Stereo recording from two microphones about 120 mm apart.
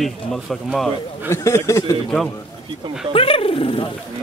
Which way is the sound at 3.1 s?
50° left (ahead or behind).